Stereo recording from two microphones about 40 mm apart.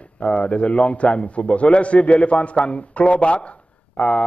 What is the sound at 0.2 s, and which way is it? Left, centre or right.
Speech, left.